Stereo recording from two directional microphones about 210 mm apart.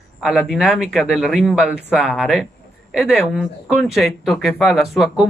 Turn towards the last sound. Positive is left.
turn(degrees=0)  # may be behind; listen again after turning